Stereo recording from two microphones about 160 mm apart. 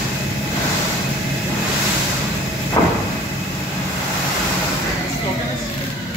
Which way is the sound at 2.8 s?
25° left (ahead or behind).